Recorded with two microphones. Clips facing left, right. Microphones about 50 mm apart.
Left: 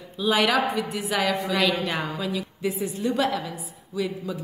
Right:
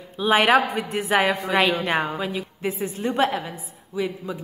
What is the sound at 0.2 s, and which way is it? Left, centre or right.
A woman's voice, right.